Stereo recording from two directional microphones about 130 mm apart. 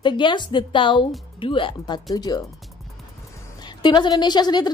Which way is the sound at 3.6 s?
35° left (ahead or behind).